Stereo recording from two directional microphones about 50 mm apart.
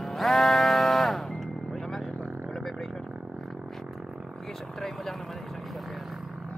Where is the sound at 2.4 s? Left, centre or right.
Centre.